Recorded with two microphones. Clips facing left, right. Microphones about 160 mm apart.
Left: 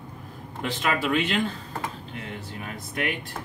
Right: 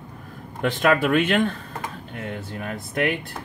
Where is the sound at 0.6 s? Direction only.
50° right (ahead or behind).